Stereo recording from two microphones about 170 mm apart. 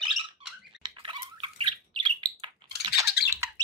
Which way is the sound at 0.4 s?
35° right (ahead or behind).